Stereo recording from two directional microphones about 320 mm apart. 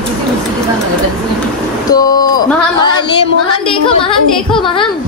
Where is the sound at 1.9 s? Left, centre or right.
Centre.